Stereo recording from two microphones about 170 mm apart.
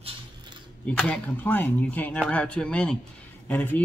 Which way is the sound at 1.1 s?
10° left (ahead or behind).